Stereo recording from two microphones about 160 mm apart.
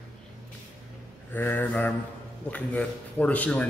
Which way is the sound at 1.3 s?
10° left (ahead or behind).